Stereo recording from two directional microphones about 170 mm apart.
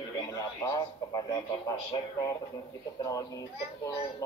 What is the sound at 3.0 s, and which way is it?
Speech, 20° left (ahead or behind).